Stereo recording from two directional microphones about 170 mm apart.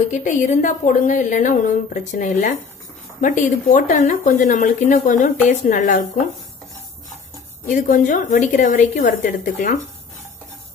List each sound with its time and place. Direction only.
0.1 s a woman's voice: 45° left (ahead or behind)
7.6 s a woman's voice: 50° left (ahead or behind)